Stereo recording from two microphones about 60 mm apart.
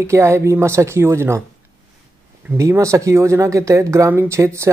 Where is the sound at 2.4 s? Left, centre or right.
Right.